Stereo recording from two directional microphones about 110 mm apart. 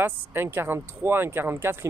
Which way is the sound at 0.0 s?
20° right (ahead or behind).